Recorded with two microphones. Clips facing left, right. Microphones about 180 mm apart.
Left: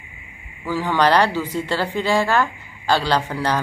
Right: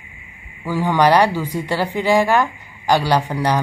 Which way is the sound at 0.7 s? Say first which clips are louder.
Right 3 dB; 15° right (ahead or behind).